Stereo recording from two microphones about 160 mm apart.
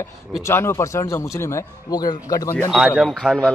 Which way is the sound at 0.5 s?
15° left (ahead or behind).